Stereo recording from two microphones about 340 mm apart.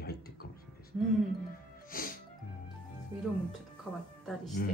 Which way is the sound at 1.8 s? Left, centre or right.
Left.